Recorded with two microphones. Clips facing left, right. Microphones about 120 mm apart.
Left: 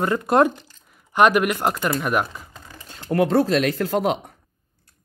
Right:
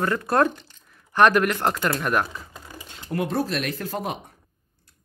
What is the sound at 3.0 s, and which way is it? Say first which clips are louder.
Speech: left 7 dB; 75° left (ahead or behind).